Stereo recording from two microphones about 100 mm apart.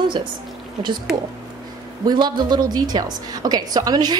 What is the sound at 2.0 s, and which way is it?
A woman's voice, 45° right (ahead or behind).